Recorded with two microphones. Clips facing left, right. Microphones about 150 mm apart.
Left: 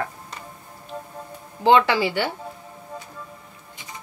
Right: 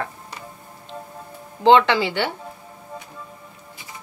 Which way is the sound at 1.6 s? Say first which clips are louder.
Right 2 dB; 25° right (ahead or behind).